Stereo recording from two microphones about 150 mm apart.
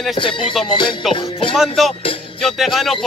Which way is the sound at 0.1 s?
35° left (ahead or behind).